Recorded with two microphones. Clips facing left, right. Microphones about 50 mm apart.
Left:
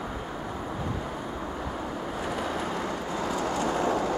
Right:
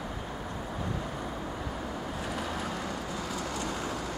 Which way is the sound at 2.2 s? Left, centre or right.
Centre.